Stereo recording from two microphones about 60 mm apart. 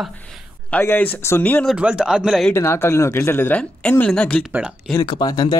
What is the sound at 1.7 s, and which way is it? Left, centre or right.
Speech, centre.